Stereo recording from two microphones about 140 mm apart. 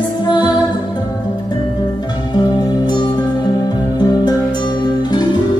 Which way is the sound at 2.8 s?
30° left (ahead or behind).